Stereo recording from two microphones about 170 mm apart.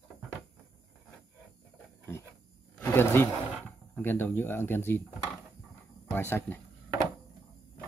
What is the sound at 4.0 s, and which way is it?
Speech, 10° left (ahead or behind).